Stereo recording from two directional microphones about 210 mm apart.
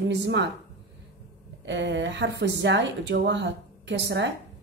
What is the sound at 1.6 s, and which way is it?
Speech, 55° right (ahead or behind).